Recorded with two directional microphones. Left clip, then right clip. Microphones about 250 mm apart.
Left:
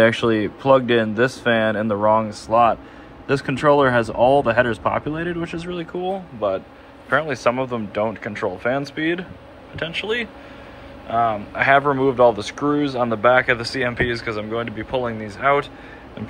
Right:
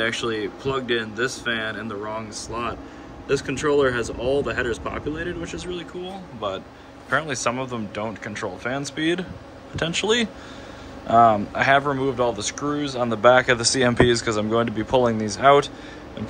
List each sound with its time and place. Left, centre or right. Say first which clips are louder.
0.0 s speech: left 8 dB; centre
7.1 s speech: left 4 dB; centre